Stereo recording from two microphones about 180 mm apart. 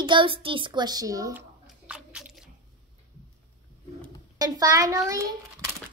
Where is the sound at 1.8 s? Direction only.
5° right (ahead or behind).